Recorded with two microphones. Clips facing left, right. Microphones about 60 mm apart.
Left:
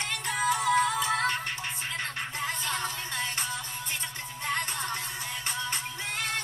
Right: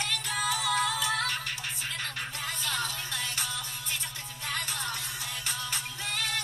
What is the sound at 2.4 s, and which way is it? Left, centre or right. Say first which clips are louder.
Music: left 2 dB; left.